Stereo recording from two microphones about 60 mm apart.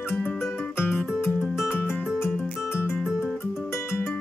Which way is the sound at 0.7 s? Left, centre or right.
Left.